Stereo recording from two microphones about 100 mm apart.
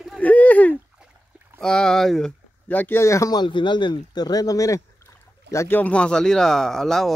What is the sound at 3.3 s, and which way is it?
Speech, 50° left (ahead or behind).